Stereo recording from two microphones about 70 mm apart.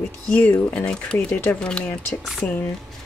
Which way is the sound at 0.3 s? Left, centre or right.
Left.